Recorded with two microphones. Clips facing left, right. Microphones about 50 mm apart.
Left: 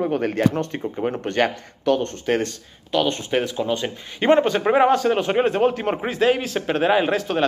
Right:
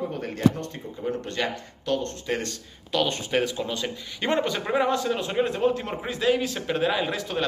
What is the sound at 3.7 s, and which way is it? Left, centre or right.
Speech, left.